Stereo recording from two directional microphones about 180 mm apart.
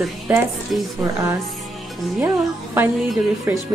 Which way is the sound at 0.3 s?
10° right (ahead or behind).